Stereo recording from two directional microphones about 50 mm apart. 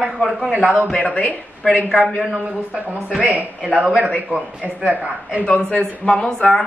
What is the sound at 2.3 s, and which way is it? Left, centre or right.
Speech, right.